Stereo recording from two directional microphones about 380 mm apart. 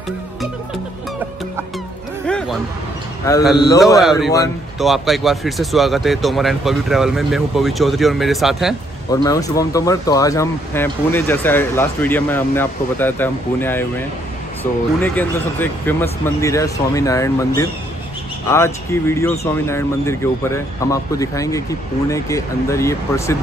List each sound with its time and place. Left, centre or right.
2.2 s music: centre
3.3 s a man's voice: centre
18.5 s speech: centre